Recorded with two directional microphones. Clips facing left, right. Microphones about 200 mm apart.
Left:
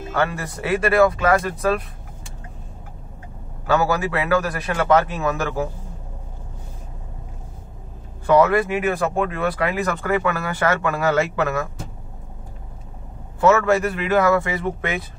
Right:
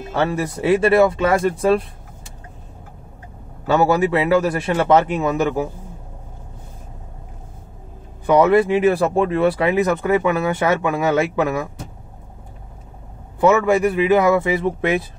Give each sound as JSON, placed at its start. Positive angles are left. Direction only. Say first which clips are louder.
{"t": 0.1, "sound": "speech", "louder": "right 3 dB", "side_deg": -25}
{"t": 3.6, "sound": "speech", "louder": "right 4 dB", "side_deg": -25}
{"t": 8.3, "sound": "speech", "louder": "right 3 dB", "side_deg": -20}
{"t": 13.4, "sound": "a man's voice", "louder": "right 2 dB", "side_deg": -15}